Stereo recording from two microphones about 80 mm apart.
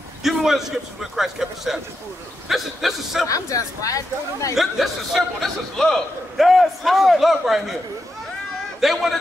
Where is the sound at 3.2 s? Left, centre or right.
Left.